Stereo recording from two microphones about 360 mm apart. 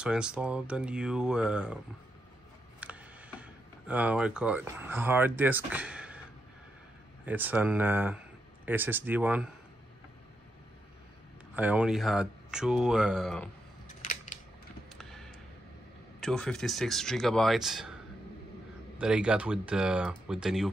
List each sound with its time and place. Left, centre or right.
0.0 s speech: centre
2.8 s speech: centre
7.2 s speech: centre
11.5 s speech: centre
14.9 s a sound: centre
16.2 s speech: centre
18.9 s speech: centre